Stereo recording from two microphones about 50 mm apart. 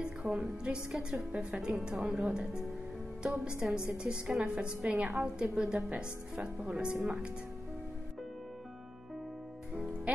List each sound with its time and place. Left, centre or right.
0.0 s a woman's voice: centre
10.1 s speech: right